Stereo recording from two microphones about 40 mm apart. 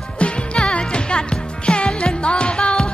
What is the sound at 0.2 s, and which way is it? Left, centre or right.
Music, left.